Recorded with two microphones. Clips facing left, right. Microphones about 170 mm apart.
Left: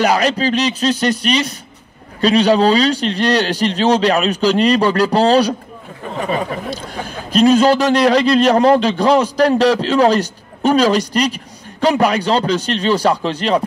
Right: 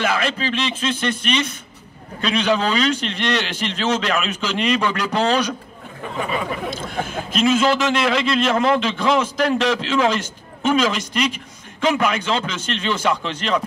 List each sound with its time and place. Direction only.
0.0 s a man's voice: 40° left (ahead or behind)